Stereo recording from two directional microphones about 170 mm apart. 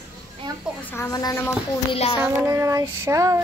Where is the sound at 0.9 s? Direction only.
20° left (ahead or behind).